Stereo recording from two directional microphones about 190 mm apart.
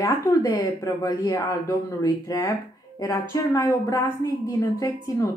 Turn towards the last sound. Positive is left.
turn(degrees=15)  # may be behind; listen again after turning